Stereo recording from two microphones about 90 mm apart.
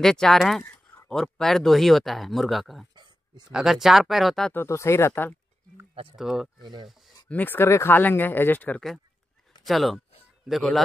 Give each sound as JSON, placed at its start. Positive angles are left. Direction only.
{"t": 0.0, "sound": "speech", "side_deg": 5}
{"t": 2.9, "sound": "a sound", "side_deg": -55}
{"t": 3.4, "sound": "speech", "side_deg": -5}
{"t": 4.6, "sound": "speech", "side_deg": 30}
{"t": 6.1, "sound": "speech", "side_deg": -5}
{"t": 6.6, "sound": "speech", "side_deg": -55}
{"t": 7.2, "sound": "speech", "side_deg": 20}
{"t": 9.7, "sound": "speech", "side_deg": 0}